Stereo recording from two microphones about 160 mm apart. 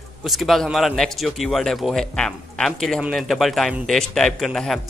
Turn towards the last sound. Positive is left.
turn(degrees=0)  # may be behind; listen again after turning